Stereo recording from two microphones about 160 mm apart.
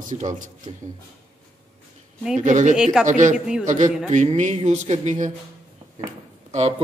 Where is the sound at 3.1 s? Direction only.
50° right (ahead or behind).